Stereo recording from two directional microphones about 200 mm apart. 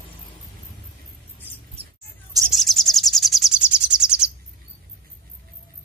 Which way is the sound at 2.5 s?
Centre (ahead or behind).